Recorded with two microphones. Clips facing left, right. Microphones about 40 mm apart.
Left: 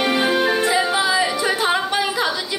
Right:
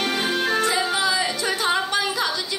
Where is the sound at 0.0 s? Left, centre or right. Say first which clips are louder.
Left 5 dB; centre.